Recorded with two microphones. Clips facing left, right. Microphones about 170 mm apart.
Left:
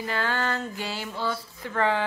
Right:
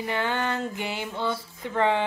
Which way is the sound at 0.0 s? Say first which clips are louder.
Right 1 dB; 20° right (ahead or behind).